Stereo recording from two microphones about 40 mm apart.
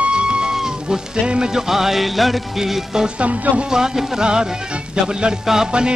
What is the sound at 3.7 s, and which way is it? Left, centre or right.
Music, centre.